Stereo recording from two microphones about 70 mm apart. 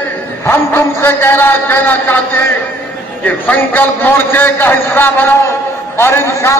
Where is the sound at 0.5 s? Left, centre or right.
Left.